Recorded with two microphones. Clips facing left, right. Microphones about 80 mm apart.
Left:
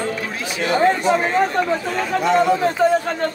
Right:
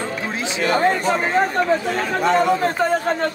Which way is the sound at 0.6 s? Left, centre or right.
Right.